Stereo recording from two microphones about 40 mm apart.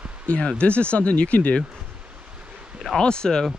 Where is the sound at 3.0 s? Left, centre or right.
Left.